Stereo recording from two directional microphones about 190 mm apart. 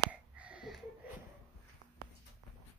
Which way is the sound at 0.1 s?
5° right (ahead or behind).